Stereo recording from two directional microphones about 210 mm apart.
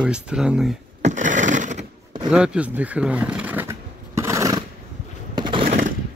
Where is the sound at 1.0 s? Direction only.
35° right (ahead or behind).